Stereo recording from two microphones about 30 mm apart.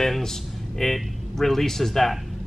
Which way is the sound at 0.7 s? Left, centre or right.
Centre.